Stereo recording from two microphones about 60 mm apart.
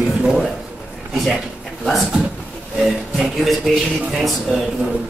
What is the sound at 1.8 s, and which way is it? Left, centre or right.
Speech, centre.